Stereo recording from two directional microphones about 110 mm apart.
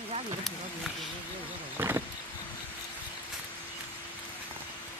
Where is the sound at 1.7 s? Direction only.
20° right (ahead or behind).